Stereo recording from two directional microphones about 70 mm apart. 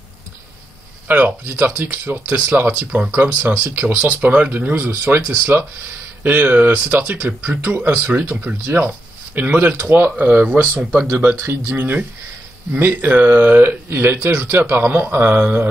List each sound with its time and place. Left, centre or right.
1.0 s speech: right